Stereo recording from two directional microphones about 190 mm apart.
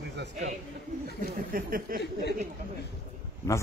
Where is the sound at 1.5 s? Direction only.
50° right (ahead or behind).